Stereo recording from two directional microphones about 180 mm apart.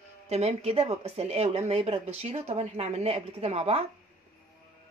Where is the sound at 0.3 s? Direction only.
35° right (ahead or behind).